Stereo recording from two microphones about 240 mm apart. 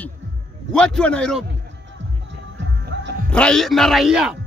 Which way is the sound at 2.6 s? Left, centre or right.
Right.